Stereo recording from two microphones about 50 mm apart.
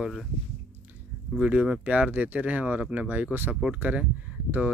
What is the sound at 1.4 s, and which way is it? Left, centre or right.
Speech, right.